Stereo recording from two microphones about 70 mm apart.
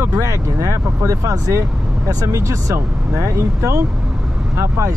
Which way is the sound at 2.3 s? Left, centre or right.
Right.